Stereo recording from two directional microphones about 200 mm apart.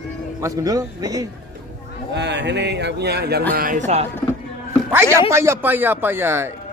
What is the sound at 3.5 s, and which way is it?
Speech, 45° right (ahead or behind).